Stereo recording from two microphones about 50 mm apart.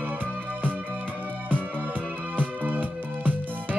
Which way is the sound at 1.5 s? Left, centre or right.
Right.